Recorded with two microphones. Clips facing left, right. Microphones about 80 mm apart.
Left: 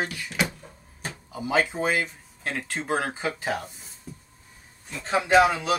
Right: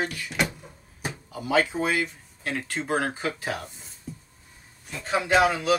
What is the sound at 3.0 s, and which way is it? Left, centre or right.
Speech, centre.